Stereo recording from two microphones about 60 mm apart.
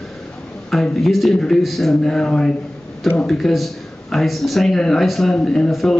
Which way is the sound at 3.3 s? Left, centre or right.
Centre.